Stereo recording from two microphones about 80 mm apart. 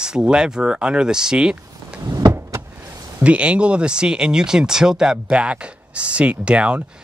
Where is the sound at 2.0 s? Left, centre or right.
Right.